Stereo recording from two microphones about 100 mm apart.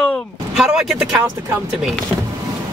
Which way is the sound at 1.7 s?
5° right (ahead or behind).